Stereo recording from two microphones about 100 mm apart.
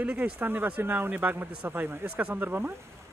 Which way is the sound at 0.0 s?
20° right (ahead or behind).